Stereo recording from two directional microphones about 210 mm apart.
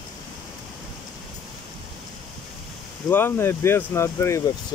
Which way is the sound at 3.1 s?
10° left (ahead or behind).